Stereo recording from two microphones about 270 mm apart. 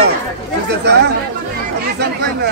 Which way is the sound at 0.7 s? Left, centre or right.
Right.